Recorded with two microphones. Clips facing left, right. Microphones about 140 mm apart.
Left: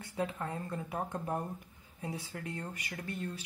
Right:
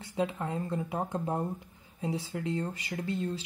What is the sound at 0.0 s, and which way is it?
Speech, 20° right (ahead or behind).